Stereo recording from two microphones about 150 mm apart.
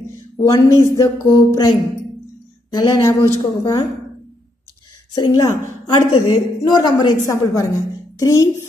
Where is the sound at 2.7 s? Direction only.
25° left (ahead or behind).